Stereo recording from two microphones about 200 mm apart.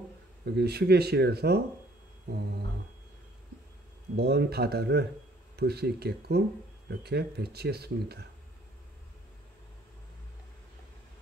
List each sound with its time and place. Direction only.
0.5 s speech: 55° right (ahead or behind)
2.2 s a sound: 50° right (ahead or behind)
4.2 s speech: 55° right (ahead or behind)